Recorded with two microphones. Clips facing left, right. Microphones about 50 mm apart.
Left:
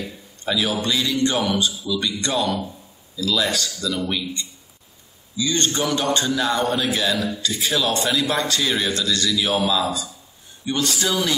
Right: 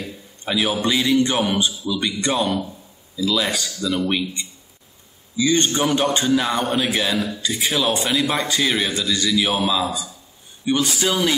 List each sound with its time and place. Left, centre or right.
0.5 s a man's voice: right